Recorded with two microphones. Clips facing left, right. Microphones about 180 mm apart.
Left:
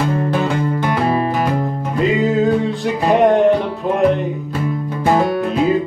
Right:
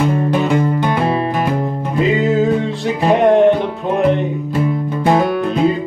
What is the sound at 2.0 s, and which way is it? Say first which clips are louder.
Music: right 1 dB; centre (ahead or behind).